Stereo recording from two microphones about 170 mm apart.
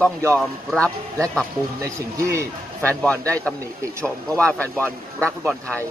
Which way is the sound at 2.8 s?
10° left (ahead or behind).